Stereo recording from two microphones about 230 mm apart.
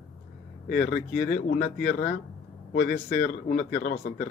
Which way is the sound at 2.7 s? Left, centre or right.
Left.